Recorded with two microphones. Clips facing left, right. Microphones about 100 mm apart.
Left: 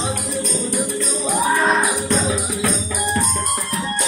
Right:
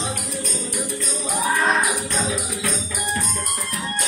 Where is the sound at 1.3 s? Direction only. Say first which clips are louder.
Left 3 dB; 30° left (ahead or behind).